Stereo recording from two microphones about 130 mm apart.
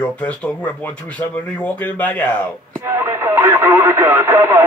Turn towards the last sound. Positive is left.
turn(degrees=-20)  # may be behind; listen again after turning